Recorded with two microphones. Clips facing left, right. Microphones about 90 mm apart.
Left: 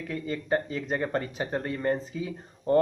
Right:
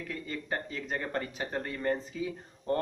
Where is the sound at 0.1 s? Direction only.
25° left (ahead or behind).